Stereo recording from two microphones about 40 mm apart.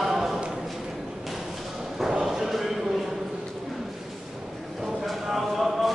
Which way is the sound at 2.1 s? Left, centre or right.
Centre.